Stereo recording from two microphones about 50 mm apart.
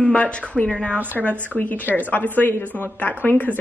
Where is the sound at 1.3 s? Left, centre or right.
Right.